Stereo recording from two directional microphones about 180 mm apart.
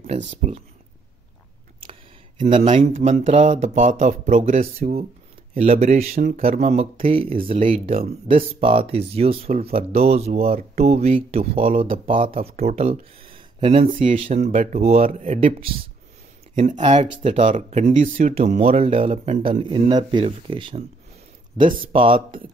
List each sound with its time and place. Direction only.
0.0 s speech: 40° right (ahead or behind)
1.8 s a sound: 30° right (ahead or behind)
2.6 s speech: 40° right (ahead or behind)
16.8 s speech: 35° right (ahead or behind)
19.6 s speech: 25° right (ahead or behind)
21.8 s speech: 30° right (ahead or behind)